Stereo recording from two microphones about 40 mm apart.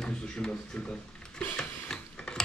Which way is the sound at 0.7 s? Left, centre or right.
Left.